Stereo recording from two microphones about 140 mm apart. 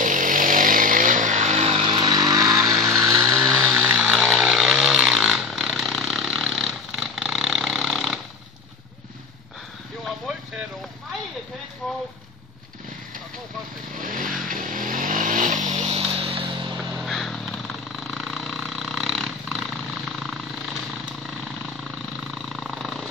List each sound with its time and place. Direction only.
0.0 s vehicle: 70° right (ahead or behind); by 1.9 s 50° right (ahead or behind)
1.9 s vehicle: 30° right (ahead or behind)
2.6 s vehicle: centre (ahead or behind)
3.3 s chainsaw: centre (ahead or behind)
10.0 s vehicle: centre (ahead or behind)
13.9 s vehicle: 75° right (ahead or behind); by 16.7 s 35° right (ahead or behind)
16.9 s vehicle: centre (ahead or behind)